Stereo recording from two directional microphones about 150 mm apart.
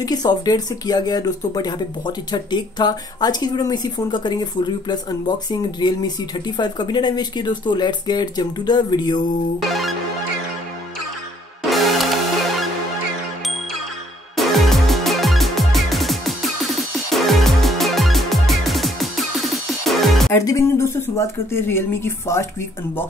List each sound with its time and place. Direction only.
0.0 s speech: 25° left (ahead or behind)
9.6 s music: centre (ahead or behind)
11.7 s music: centre (ahead or behind)
14.3 s music: centre (ahead or behind)
20.3 s speech: 20° left (ahead or behind)